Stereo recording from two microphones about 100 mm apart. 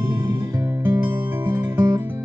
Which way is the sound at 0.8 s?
20° right (ahead or behind).